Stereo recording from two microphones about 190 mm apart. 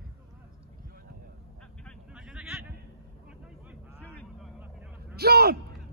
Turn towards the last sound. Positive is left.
turn(degrees=-55)  # may be behind; listen again after turning